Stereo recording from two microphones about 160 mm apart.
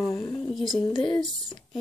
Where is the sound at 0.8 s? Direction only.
30° left (ahead or behind).